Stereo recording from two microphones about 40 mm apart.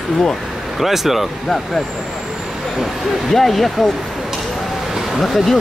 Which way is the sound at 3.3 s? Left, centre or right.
Centre.